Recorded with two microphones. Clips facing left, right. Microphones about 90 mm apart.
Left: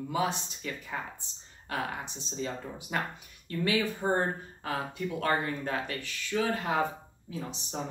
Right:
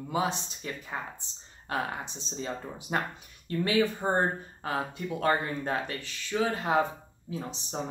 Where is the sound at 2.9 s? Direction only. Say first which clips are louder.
Right 3 dB; 35° right (ahead or behind).